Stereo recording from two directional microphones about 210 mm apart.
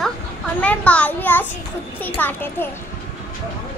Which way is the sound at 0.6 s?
5° left (ahead or behind).